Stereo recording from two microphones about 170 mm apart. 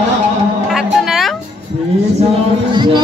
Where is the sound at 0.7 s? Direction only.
Centre (ahead or behind).